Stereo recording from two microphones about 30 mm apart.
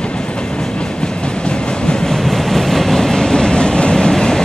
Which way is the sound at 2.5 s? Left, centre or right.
Centre.